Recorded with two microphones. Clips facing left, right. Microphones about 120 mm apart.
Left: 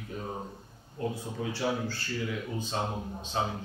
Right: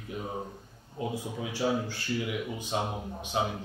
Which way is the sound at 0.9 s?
15° right (ahead or behind).